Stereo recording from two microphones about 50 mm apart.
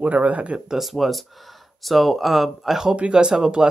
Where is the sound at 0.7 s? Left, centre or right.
Centre.